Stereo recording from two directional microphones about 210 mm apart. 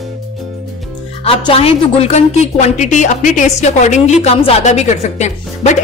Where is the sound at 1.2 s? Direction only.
25° left (ahead or behind).